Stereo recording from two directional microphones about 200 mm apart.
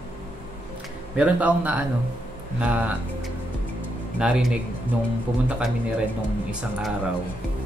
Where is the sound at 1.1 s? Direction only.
5° right (ahead or behind).